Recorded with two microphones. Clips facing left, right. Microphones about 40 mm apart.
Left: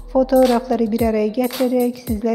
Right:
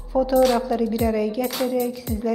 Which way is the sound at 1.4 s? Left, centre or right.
Centre.